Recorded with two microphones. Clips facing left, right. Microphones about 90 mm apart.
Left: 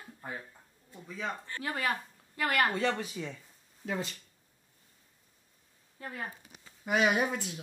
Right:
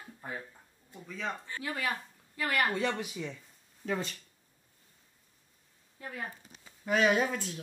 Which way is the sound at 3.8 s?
50° right (ahead or behind).